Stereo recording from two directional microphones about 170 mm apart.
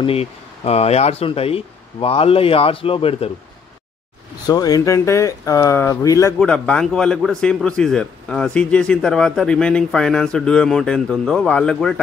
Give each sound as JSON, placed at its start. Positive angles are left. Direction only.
{"t": 0.0, "sound": "speech", "side_deg": 35}
{"t": 4.5, "sound": "speech", "side_deg": 20}
{"t": 6.4, "sound": "speech", "side_deg": 5}